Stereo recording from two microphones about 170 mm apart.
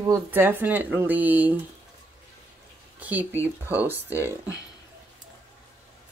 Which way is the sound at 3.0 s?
10° right (ahead or behind).